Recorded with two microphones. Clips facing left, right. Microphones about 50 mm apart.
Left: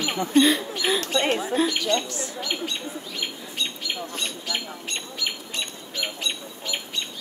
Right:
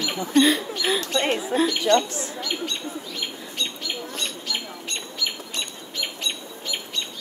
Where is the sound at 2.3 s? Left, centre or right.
Centre.